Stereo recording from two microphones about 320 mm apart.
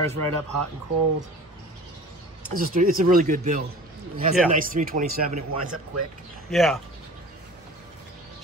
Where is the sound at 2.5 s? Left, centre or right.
Right.